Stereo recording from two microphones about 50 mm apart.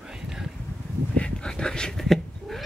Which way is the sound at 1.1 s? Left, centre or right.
Centre.